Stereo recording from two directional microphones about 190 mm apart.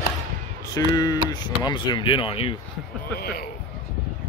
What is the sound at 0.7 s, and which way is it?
Speech, 20° left (ahead or behind).